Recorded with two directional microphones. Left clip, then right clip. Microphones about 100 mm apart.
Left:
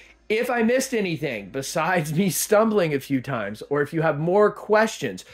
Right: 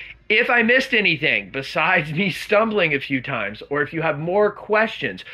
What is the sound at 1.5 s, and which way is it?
Speech, 65° left (ahead or behind).